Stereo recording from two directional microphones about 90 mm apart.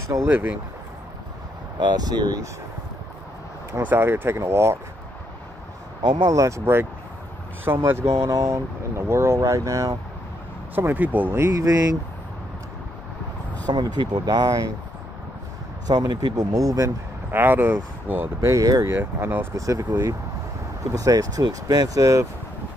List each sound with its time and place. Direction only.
0.2 s speech: 20° right (ahead or behind)
1.8 s speech: 50° right (ahead or behind)
3.8 s speech: 25° right (ahead or behind)
6.3 s speech: 35° right (ahead or behind)
6.6 s speech: 25° right (ahead or behind)
8.3 s speech: 40° right (ahead or behind)
10.7 s speech: 20° right (ahead or behind)
11.6 s speech: 45° right (ahead or behind)
13.7 s speech: 50° right (ahead or behind)
15.9 s speech: 50° right (ahead or behind)
17.3 s speech: 20° right (ahead or behind)
18.4 s speech: 40° right (ahead or behind)
18.9 s speech: 25° right (ahead or behind)
20.9 s speech: 40° right (ahead or behind)